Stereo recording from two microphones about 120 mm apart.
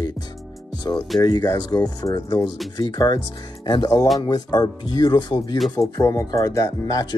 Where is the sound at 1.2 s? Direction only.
35° left (ahead or behind).